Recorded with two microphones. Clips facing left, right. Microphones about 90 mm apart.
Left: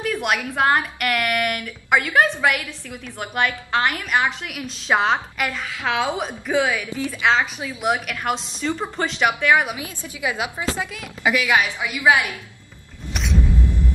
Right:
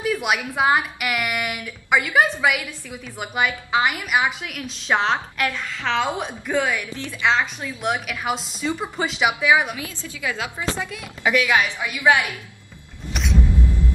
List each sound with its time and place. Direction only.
0.0 s a sound: 5° right (ahead or behind)
0.6 s a woman's voice: 5° right (ahead or behind)
4.5 s a woman's voice: 5° left (ahead or behind)
9.8 s a woman's voice: 15° left (ahead or behind)
10.8 s a woman's voice: centre (ahead or behind)
13.1 s music: centre (ahead or behind)